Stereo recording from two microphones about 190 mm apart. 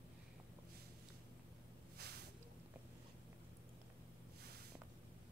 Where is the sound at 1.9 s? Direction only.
55° right (ahead or behind).